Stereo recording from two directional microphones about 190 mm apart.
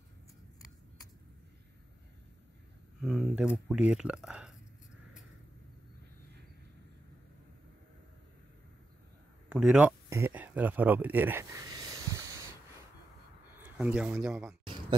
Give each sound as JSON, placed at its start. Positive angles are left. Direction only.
{"t": 3.0, "sound": "speech", "side_deg": -5}
{"t": 9.5, "sound": "speech", "side_deg": -5}
{"t": 11.7, "sound": "a sound", "side_deg": -15}
{"t": 13.6, "sound": "speech", "side_deg": -5}